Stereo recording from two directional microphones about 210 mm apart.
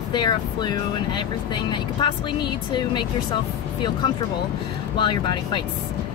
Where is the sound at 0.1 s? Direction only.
20° left (ahead or behind).